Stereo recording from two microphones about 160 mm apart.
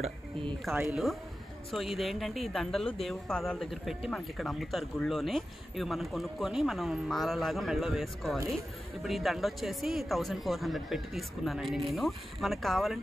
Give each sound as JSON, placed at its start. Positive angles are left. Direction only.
{"t": 0.0, "sound": "speech", "side_deg": -30}
{"t": 1.7, "sound": "speech", "side_deg": 0}